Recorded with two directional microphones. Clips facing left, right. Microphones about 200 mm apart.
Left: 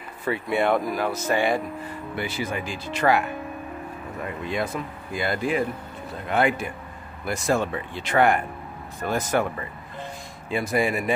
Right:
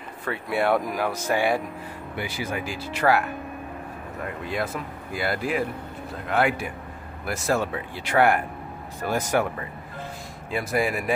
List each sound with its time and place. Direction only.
0.2 s speech: centre (ahead or behind)
5.1 s speech: 5° right (ahead or behind)
10.5 s speech: centre (ahead or behind)